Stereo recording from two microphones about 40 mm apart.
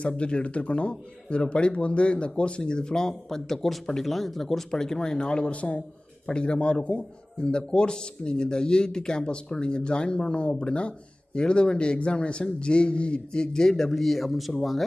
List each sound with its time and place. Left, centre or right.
0.2 s a man's voice: left
5.5 s a man's voice: left; by 14.8 s centre